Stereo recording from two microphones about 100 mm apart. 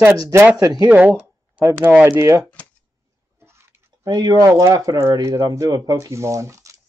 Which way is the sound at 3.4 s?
25° right (ahead or behind).